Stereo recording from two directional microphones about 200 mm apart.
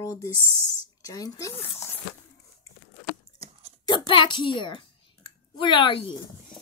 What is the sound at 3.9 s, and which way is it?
A child's voice, 25° left (ahead or behind).